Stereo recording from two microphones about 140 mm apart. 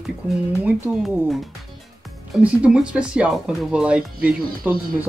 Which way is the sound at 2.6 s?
5° right (ahead or behind).